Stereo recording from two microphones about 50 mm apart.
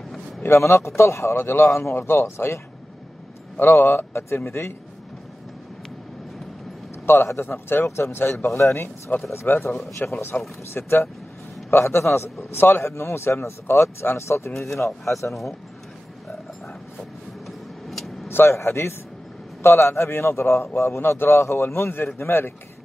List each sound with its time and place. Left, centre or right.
0.5 s a man's voice: left
3.5 s a man's voice: left
7.2 s a man's voice: left
9.1 s speech: left
9.5 s speech: left
10.0 s speech: left
10.7 s a man's voice: left
14.1 s speech: left
14.9 s speech: centre
17.5 s vehicle: centre
18.3 s a man's voice: left